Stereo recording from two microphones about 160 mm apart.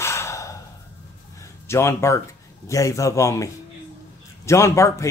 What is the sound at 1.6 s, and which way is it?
A man's voice, 15° left (ahead or behind).